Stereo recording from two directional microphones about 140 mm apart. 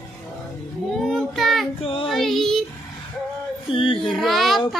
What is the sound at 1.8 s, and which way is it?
Child singing, 40° left (ahead or behind).